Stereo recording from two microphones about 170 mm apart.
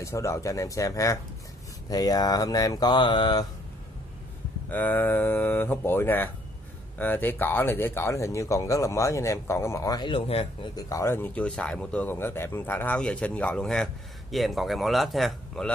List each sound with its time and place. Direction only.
0.0 s speech: 15° left (ahead or behind)
4.6 s speech: 10° left (ahead or behind); by 10.7 s 35° left (ahead or behind)
10.8 s speech: 20° left (ahead or behind); by 15.7 s centre (ahead or behind)